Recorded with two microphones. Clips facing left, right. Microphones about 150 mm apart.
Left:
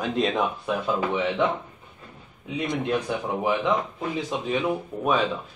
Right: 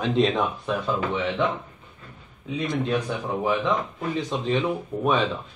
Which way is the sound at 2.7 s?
15° left (ahead or behind).